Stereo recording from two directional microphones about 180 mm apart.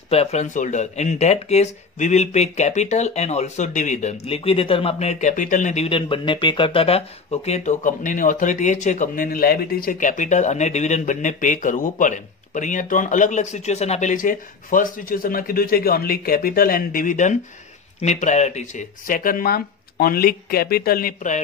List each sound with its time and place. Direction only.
0.1 s speech: 35° left (ahead or behind)